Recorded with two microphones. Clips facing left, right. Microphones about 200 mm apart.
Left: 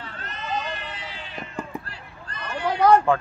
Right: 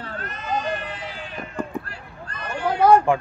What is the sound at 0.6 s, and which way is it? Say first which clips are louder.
Vehicle: right 5 dB; 50° right (ahead or behind).